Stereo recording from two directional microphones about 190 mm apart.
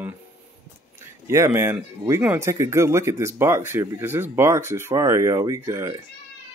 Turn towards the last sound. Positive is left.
turn(degrees=-15)  # may be behind; listen again after turning